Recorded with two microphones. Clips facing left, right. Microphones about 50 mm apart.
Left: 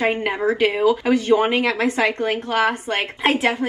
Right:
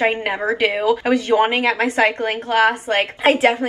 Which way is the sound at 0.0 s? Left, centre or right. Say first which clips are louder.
Right 1 dB; right.